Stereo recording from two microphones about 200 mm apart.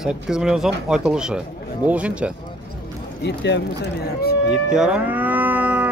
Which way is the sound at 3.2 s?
60° left (ahead or behind).